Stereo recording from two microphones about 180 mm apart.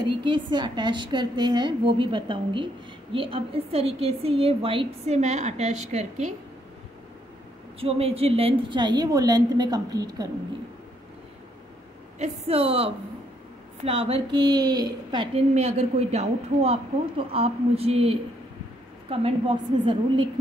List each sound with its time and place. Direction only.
0.0 s a woman's voice: 25° right (ahead or behind)
7.8 s a woman's voice: 35° right (ahead or behind)
12.2 s a woman's voice: 35° right (ahead or behind)
15.5 s a woman's voice: 35° right (ahead or behind)